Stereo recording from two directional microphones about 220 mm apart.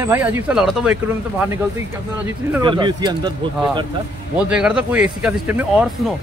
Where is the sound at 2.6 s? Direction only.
20° right (ahead or behind).